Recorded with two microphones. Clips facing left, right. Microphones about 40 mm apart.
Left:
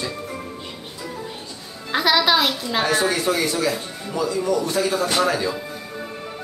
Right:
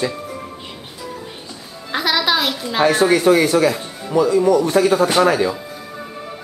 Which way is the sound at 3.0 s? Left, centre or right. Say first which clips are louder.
Right 7 dB; right.